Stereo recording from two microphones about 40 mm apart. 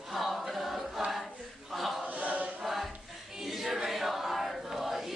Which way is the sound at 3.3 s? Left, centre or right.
Centre.